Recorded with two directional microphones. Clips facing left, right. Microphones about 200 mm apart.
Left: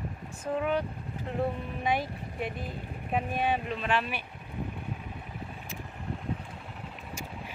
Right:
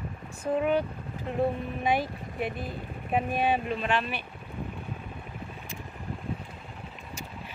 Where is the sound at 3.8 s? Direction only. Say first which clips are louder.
Right 1 dB; 5° left (ahead or behind).